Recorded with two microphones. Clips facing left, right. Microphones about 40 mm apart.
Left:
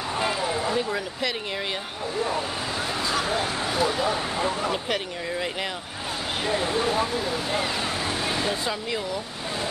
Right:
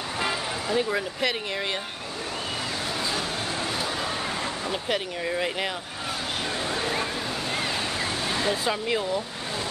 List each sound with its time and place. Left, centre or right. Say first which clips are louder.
0.7 s speech: right 1 dB; centre
3.7 s speech: left 5 dB; centre
6.4 s speech: left 6 dB; centre
8.3 s a sound: right 1 dB; centre
8.8 s speech: right 3 dB; centre